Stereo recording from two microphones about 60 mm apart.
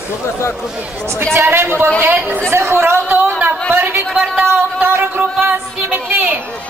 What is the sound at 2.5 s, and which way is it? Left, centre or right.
Chatter, right.